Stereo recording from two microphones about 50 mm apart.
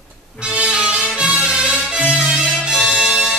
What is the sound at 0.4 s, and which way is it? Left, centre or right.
Music, right.